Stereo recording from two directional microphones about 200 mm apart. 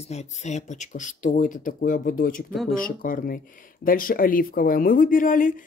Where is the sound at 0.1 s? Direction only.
35° left (ahead or behind).